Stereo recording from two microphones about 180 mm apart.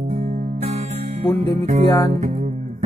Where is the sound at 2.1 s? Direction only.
35° right (ahead or behind).